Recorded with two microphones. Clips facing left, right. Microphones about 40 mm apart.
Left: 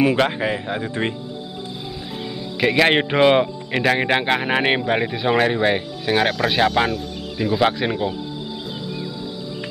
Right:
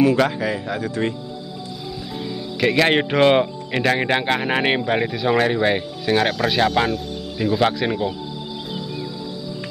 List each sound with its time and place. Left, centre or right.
0.0 s speech: left
2.6 s a man's voice: centre
5.5 s a man's voice: centre